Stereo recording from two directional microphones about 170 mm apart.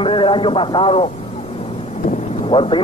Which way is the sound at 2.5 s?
30° left (ahead or behind).